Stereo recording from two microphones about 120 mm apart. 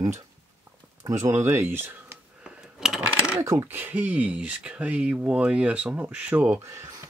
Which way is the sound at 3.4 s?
25° right (ahead or behind).